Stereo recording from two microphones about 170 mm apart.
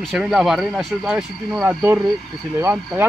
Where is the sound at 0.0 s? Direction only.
Centre (ahead or behind).